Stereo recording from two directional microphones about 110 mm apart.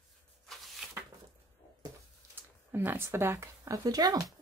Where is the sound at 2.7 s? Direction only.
20° right (ahead or behind); by 4.2 s 35° right (ahead or behind).